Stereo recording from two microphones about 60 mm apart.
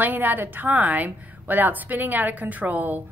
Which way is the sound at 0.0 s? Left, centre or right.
Right.